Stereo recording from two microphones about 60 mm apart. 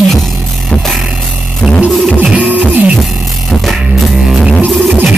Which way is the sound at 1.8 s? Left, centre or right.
Right.